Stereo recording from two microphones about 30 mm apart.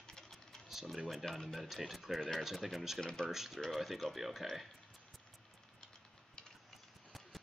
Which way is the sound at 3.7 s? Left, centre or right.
Centre.